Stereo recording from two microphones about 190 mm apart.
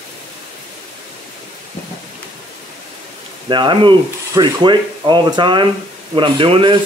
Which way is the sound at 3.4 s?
25° right (ahead or behind).